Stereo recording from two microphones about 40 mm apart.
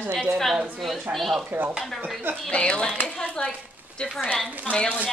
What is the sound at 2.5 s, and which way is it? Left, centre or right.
Speech, left.